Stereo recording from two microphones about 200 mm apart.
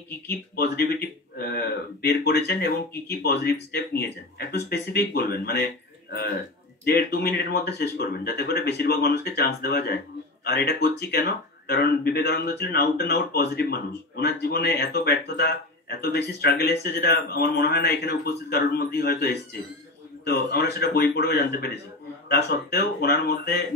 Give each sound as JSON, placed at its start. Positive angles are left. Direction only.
{"t": 0.6, "sound": "speech", "side_deg": 55}